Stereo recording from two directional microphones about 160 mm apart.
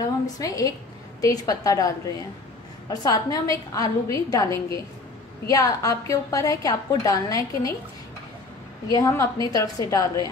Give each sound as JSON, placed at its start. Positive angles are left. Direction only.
{"t": 0.0, "sound": "a woman's voice", "side_deg": 20}
{"t": 2.9, "sound": "a woman's voice", "side_deg": 25}
{"t": 8.8, "sound": "a woman's voice", "side_deg": 20}